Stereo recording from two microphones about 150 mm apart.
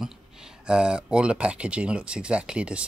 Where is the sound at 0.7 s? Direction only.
5° right (ahead or behind).